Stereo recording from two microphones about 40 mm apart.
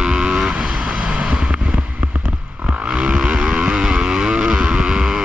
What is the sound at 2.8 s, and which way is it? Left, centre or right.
Vehicle, right.